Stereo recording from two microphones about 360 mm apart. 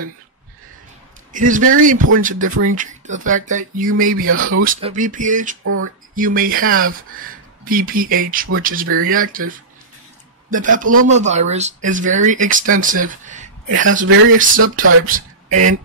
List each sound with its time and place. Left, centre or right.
1.3 s speech: right
2.4 s speech: right
2.7 s speech: right
4.3 s speech: right
4.6 s speech: centre
10.5 s speech: right
14.6 s speech: right
15.0 s speech: right